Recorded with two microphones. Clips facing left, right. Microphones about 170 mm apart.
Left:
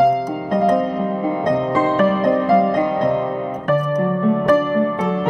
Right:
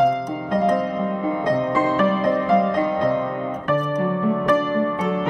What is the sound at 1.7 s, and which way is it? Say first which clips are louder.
Music: left 3 dB; 40° left (ahead or behind).